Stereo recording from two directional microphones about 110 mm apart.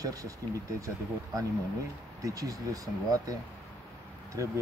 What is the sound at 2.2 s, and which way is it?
Speech, 30° right (ahead or behind).